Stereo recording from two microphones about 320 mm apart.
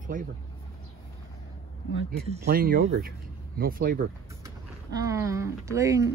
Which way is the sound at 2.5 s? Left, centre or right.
Right.